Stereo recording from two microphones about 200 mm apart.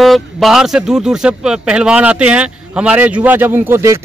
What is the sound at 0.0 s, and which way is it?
A man's voice, centre (ahead or behind).